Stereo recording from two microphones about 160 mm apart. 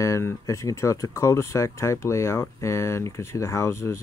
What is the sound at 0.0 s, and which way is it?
Speech, 20° left (ahead or behind).